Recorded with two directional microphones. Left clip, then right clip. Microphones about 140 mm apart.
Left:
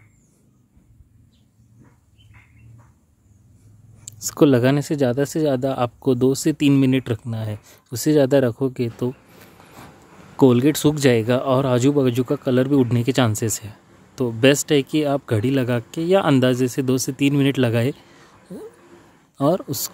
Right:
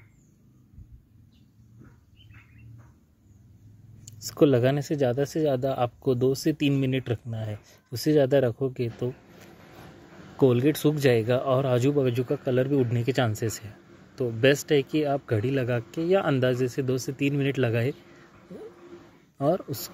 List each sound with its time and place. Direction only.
4.0 s speech: 35° left (ahead or behind)
19.3 s speech: 40° left (ahead or behind)